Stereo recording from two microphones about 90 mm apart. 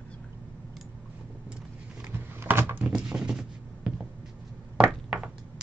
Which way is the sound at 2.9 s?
10° right (ahead or behind).